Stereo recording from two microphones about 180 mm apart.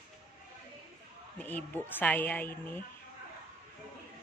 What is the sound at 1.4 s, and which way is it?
A woman's voice, 10° left (ahead or behind).